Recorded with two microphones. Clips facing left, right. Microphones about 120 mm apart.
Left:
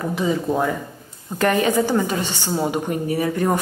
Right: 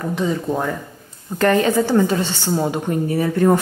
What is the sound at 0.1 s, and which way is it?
Speech, 5° left (ahead or behind).